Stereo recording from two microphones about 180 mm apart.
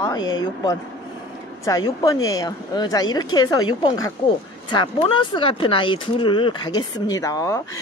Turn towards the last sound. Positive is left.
turn(degrees=20)  # may be behind; listen again after turning